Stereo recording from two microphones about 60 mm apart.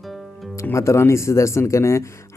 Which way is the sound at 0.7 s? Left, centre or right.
Left.